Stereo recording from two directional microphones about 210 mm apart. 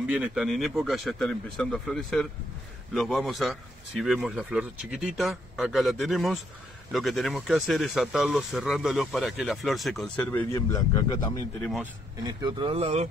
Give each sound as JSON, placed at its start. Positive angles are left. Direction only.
{"t": 0.0, "sound": "speech", "side_deg": -5}
{"t": 11.8, "sound": "speech", "side_deg": -20}